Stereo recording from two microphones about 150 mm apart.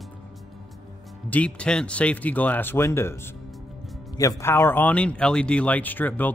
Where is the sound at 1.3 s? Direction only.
10° left (ahead or behind).